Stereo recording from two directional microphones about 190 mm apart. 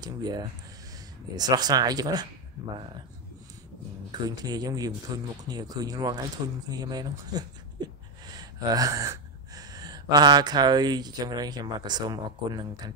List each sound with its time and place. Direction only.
0.0 s speech: 20° right (ahead or behind)
4.5 s speech: 20° right (ahead or behind)